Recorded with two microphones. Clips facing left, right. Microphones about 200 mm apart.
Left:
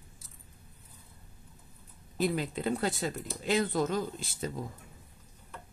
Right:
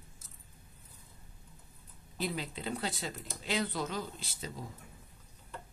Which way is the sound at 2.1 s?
50° left (ahead or behind).